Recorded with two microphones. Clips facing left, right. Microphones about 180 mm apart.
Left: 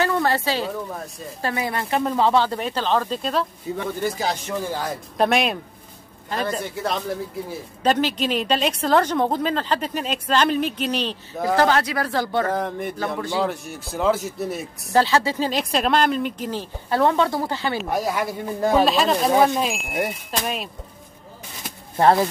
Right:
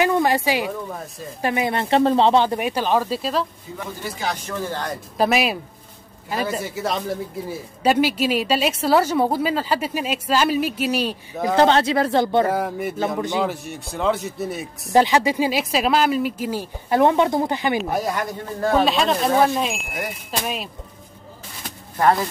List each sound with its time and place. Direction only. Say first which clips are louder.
0.0 s a sound: right 3 dB; 15° right (ahead or behind)
1.4 s speech: right 4 dB; 20° right (ahead or behind); by 3.4 s 5° right (ahead or behind)
4.2 s speech: left 2 dB; 30° left (ahead or behind)
4.6 s speech: even; 10° left (ahead or behind); by 11.5 s 10° right (ahead or behind)
11.5 s speech: right 3 dB; 25° right (ahead or behind)
12.4 s speech: right 2 dB; 5° right (ahead or behind)
13.2 s speech: even; 20° right (ahead or behind)
13.5 s speech: even; centre (ahead or behind)
14.9 s speech: right 2 dB; 15° right (ahead or behind)
17.8 s speech: even; centre (ahead or behind)